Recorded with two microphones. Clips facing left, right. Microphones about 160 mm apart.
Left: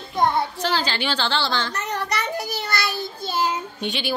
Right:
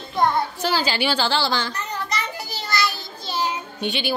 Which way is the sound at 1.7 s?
70° left (ahead or behind).